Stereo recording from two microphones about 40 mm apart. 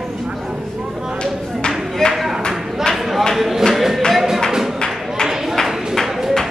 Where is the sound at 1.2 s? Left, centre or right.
Left.